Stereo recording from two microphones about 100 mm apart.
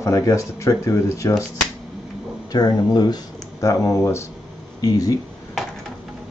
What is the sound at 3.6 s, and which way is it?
Speech, 30° left (ahead or behind).